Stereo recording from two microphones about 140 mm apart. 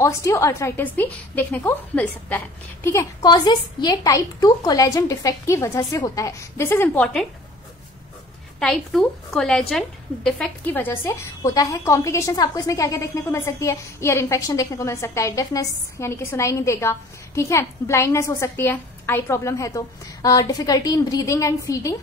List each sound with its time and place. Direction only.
0.0 s a woman's voice: 20° left (ahead or behind)
8.5 s a woman's voice: 5° left (ahead or behind); by 21.9 s 25° left (ahead or behind)